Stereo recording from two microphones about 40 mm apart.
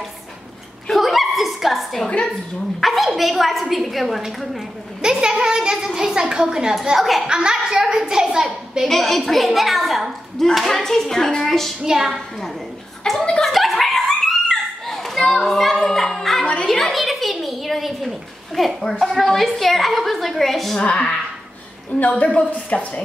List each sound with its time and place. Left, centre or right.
0.9 s dog: centre
2.0 s a woman's voice: left
2.8 s speech: centre
5.0 s a child's voice: centre
7.3 s a child's voice: centre
8.8 s speech: centre
11.8 s a child's voice: centre
13.0 s a sound: left
13.4 s a sound: centre
15.1 s child singing: centre
16.6 s a sound: centre
18.8 s speech: centre
19.6 s speech: centre
22.2 s a woman's voice: left